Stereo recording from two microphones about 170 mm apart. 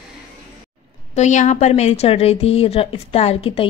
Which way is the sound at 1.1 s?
45° left (ahead or behind).